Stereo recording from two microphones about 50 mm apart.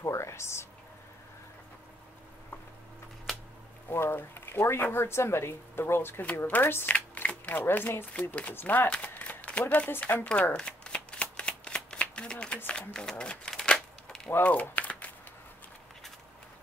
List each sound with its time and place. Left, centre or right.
0.0 s a sound: left
3.9 s speech: left
6.9 s shuffling cards: left
7.5 s speech: left
8.1 s speech: left
9.2 s a sound: left
9.9 s speech: left
10.5 s shuffling cards: centre
12.7 s speech: centre
13.2 s typewriter: centre
14.4 s a sound: left